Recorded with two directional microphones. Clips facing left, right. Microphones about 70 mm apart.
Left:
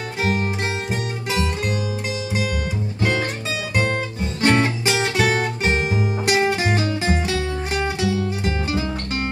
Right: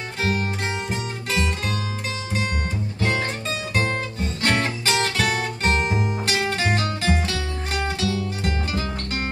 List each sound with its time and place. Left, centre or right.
3.0 s music: centre
4.4 s music: centre
7.3 s music: left
7.7 s music: centre